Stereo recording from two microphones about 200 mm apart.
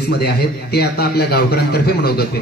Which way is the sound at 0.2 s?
50° left (ahead or behind).